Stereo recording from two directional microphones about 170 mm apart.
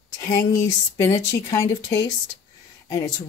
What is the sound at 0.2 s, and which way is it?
Speech, 20° left (ahead or behind).